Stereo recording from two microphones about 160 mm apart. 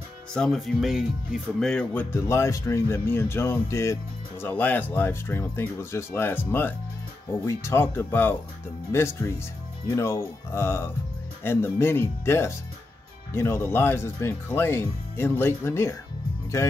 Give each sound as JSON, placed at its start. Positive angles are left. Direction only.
{"t": 0.3, "sound": "speech", "side_deg": 5}